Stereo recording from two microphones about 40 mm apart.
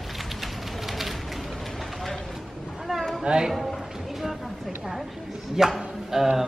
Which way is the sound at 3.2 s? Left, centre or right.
Right.